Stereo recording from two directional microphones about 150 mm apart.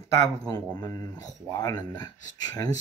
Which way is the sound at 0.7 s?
25° left (ahead or behind).